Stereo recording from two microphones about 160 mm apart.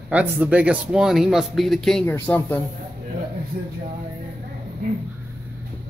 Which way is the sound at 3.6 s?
65° right (ahead or behind).